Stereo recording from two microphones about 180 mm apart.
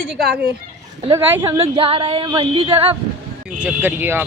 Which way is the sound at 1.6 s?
30° right (ahead or behind).